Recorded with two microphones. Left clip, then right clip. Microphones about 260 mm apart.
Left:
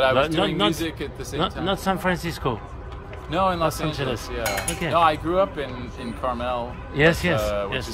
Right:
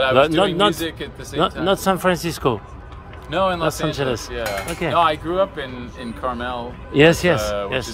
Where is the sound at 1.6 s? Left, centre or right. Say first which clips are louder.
Right 6 dB; right.